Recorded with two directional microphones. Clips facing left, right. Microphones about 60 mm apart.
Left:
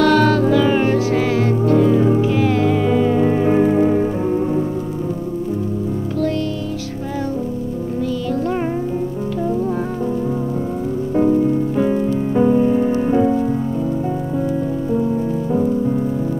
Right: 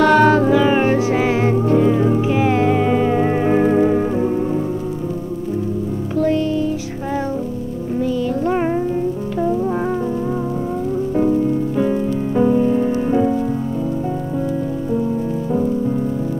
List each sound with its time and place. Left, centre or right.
0.0 s music: right
6.1 s music: right
8.0 s music: right
11.8 s music: centre